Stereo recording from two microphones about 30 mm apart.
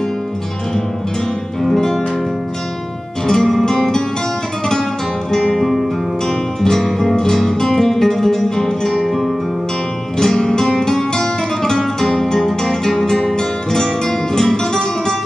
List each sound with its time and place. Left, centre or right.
3.3 s music: centre
5.3 s guitar: centre
6.2 s music: centre
10.1 s music: left